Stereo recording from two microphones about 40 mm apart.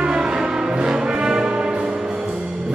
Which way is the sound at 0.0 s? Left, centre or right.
Centre.